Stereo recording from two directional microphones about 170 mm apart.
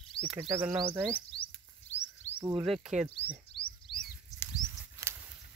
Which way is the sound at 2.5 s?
Centre (ahead or behind).